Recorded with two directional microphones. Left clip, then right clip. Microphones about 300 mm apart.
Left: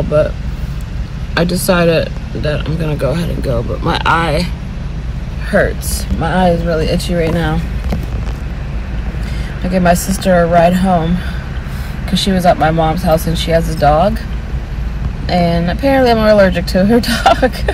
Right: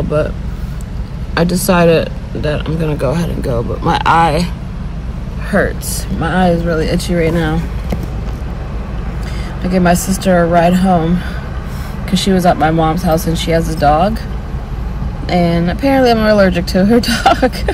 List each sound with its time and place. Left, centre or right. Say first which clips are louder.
1.3 s speech: even; centre
6.2 s speech: left 1 dB; centre
9.7 s speech: left 1 dB; centre
12.4 s speech: left 1 dB; centre
15.2 s speech: even; centre